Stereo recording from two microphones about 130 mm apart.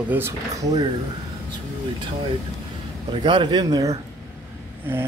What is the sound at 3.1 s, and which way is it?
Speech, 35° right (ahead or behind).